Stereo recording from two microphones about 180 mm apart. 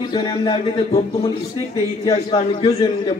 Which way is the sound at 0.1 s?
25° left (ahead or behind).